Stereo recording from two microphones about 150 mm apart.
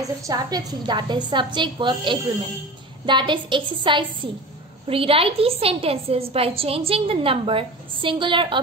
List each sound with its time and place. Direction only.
0.3 s a woman's voice: 25° right (ahead or behind)